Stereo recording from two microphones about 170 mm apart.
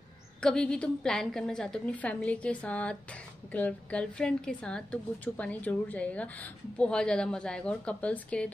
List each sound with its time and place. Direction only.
0.4 s a woman's voice: 5° left (ahead or behind)